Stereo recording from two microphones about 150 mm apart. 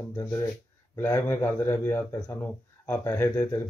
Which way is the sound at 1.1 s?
15° left (ahead or behind).